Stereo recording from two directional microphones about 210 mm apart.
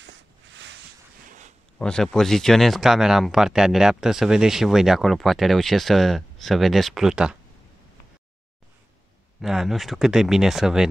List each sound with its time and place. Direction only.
0.0 s a sound: 60° right (ahead or behind)
1.8 s speech: 5° left (ahead or behind)
9.4 s speech: centre (ahead or behind)